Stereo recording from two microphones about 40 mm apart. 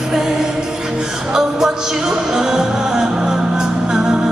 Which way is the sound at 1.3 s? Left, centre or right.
Centre.